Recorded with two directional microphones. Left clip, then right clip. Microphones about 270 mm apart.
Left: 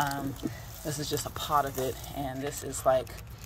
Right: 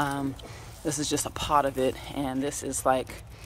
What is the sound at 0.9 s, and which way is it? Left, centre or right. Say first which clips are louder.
Speech: right 4 dB; centre.